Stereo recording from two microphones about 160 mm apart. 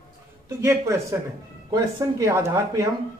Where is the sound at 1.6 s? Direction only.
20° right (ahead or behind).